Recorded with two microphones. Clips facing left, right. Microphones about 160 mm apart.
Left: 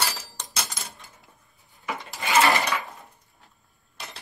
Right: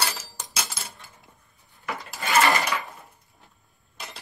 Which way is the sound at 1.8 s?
Centre (ahead or behind).